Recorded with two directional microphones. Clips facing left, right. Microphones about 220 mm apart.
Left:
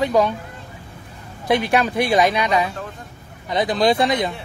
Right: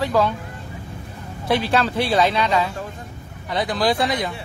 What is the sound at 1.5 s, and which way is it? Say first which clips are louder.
Speech: left 2 dB; 15° left (ahead or behind).